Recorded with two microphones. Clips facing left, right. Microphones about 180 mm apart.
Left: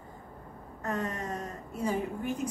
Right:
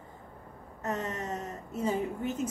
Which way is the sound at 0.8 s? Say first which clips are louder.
Even; 25° right (ahead or behind).